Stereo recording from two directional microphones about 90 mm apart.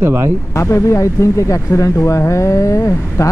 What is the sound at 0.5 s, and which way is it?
Speech, 35° left (ahead or behind).